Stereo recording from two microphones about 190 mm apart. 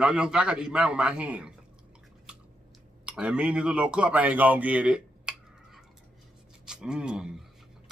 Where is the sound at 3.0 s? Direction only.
5° right (ahead or behind).